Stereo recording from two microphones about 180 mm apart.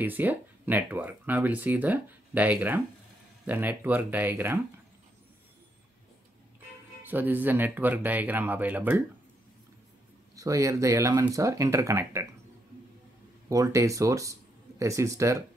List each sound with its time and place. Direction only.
0.0 s speech: 10° right (ahead or behind)
7.0 s speech: 10° right (ahead or behind)
10.3 s speech: 20° right (ahead or behind)
13.5 s speech: 20° right (ahead or behind)